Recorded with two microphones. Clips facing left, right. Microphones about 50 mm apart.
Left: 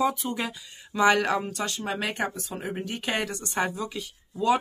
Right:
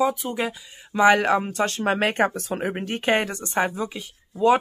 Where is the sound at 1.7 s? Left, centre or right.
Right.